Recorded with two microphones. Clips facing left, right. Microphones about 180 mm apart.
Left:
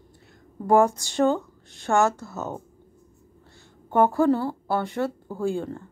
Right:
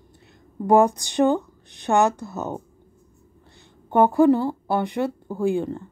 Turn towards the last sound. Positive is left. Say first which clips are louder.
# right 4 dB
turn(degrees=-15)  # may be behind; listen again after turning